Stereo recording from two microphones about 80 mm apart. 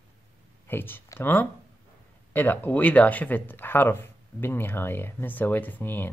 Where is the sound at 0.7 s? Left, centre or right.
Left.